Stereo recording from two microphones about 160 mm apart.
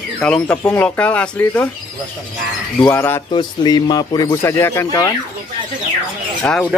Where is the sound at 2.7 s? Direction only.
10° left (ahead or behind).